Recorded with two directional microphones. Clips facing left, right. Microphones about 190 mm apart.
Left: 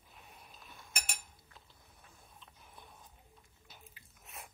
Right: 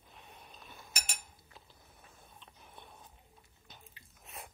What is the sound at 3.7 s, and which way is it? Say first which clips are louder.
Biting: right 1 dB; centre (ahead or behind).